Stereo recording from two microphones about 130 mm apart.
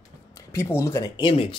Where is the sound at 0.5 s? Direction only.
20° left (ahead or behind).